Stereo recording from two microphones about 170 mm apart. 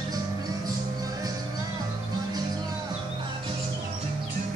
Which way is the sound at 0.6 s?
20° right (ahead or behind).